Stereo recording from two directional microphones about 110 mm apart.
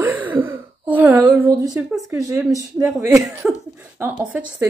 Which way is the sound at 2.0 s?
25° right (ahead or behind).